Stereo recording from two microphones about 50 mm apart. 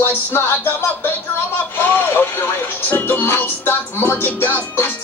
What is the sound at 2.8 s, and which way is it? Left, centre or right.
Music, left.